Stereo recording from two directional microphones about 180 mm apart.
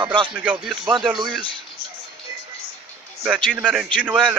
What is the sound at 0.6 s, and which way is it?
Speech, 5° right (ahead or behind).